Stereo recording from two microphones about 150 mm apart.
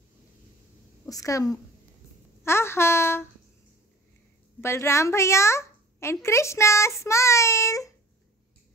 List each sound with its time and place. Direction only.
1.0 s a child's voice: 20° left (ahead or behind)
2.4 s a sound: 15° left (ahead or behind)
4.6 s a child's voice: 15° left (ahead or behind)